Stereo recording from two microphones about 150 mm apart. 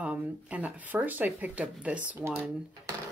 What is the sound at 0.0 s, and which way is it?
Speech, 10° right (ahead or behind).